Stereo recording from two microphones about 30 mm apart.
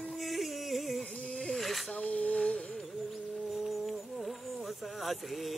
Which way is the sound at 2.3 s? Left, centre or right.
Left.